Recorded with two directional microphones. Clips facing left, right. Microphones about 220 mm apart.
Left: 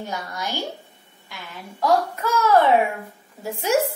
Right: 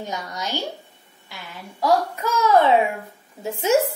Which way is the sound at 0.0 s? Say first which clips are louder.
Even; 20° right (ahead or behind).